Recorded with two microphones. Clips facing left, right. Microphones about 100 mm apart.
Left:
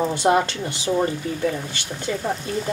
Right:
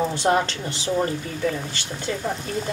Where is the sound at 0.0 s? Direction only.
10° left (ahead or behind).